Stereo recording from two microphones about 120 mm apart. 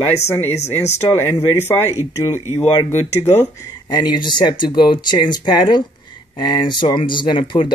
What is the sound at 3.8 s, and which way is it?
Speech, 40° left (ahead or behind).